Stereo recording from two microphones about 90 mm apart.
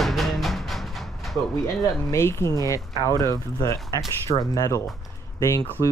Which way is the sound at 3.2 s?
40° left (ahead or behind).